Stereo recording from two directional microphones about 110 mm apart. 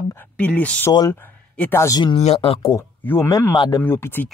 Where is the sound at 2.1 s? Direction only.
70° left (ahead or behind).